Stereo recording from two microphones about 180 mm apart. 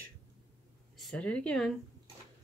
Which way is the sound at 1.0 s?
5° left (ahead or behind).